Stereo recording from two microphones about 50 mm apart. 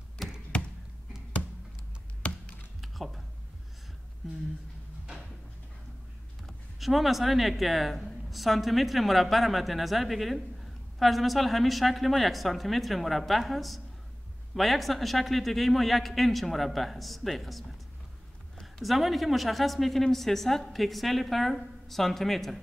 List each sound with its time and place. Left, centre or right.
0.2 s a sound: centre
2.2 s computer keyboard: left
2.8 s typing: centre
4.2 s speech: centre
6.4 s speech: centre
18.8 s speech: centre